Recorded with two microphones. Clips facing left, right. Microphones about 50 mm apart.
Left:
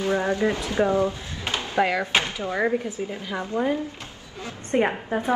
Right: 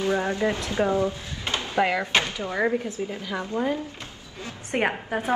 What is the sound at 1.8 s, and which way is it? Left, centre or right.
Speech, centre.